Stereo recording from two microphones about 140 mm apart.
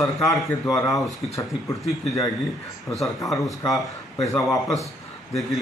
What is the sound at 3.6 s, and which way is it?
A man's voice, 25° left (ahead or behind).